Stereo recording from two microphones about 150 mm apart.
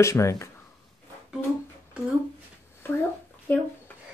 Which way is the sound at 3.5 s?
10° left (ahead or behind).